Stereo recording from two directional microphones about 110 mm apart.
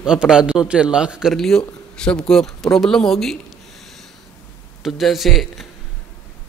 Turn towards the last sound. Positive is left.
turn(degrees=0)  # may be behind; listen again after turning